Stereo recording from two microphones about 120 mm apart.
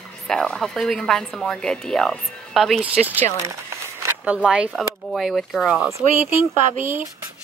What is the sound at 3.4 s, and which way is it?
Crumpling, 25° right (ahead or behind).